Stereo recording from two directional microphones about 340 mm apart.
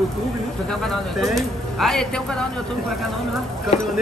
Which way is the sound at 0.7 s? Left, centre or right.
Centre.